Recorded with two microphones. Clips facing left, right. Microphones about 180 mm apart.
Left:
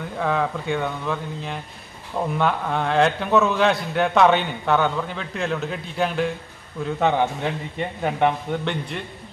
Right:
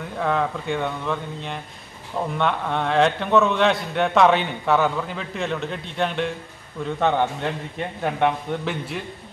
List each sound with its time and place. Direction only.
0.0 s a man's voice: centre (ahead or behind)